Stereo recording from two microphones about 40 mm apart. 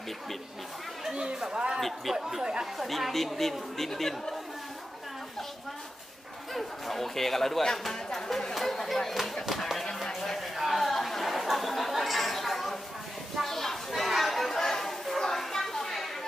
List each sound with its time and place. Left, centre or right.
1.1 s speech: centre
1.8 s speech: centre
2.1 s speech: centre
6.5 s speech: centre
9.1 s speech: centre
10.2 s a sound: centre
10.6 s chatter: centre
13.4 s a sound: centre